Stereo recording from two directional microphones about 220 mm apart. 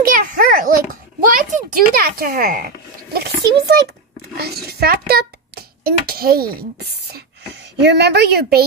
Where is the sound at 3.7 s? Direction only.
45° right (ahead or behind).